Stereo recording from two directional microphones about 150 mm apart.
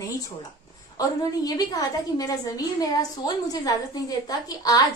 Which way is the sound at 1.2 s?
25° left (ahead or behind).